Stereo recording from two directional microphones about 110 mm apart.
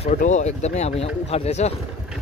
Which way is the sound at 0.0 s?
90° left.